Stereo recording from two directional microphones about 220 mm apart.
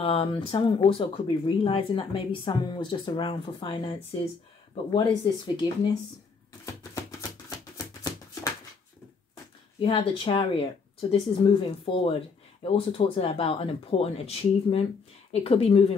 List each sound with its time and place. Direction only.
0.0 s speech: 25° left (ahead or behind)
4.8 s speech: 20° left (ahead or behind)
6.6 s a sound: 15° left (ahead or behind)
9.8 s speech: 25° left (ahead or behind)